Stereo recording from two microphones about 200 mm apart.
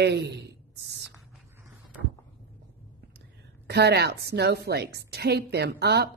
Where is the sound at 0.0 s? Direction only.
55° right (ahead or behind).